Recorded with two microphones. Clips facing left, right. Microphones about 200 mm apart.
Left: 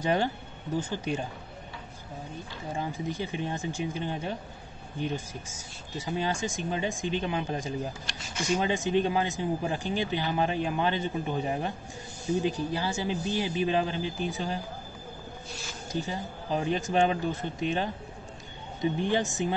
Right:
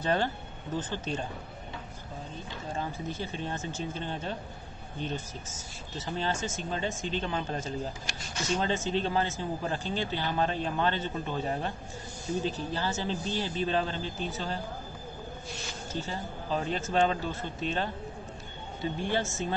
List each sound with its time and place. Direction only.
0.0 s speech: 15° left (ahead or behind)
2.7 s speech: 15° left (ahead or behind)
15.9 s speech: 15° left (ahead or behind)